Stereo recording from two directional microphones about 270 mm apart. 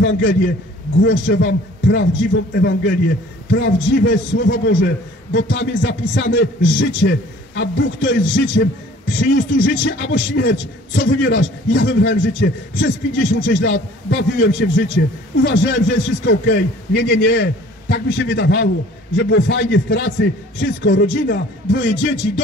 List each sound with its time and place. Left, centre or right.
0.0 s a man's voice: left